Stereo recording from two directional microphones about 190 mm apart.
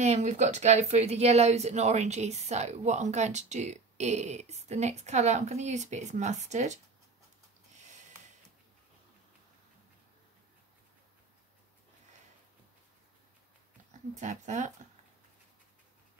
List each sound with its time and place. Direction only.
0.0 s speech: 35° right (ahead or behind)
14.1 s speech: 40° right (ahead or behind)